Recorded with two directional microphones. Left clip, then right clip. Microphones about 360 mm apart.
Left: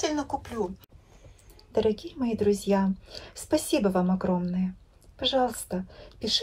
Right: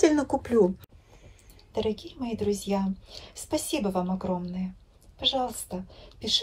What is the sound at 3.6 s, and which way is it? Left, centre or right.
A woman's voice, left.